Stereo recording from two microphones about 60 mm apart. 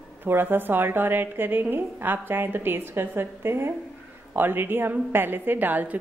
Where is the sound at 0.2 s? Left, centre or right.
Right.